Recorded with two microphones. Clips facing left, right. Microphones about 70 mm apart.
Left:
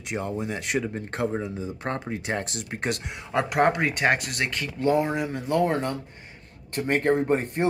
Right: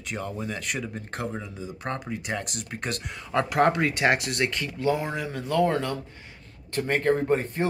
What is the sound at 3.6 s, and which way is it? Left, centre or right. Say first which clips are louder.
Speech: even; centre.